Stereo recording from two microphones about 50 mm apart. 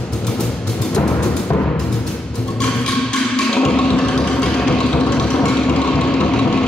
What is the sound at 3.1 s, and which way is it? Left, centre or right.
Music, centre.